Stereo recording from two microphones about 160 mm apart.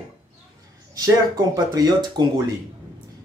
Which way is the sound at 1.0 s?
25° right (ahead or behind).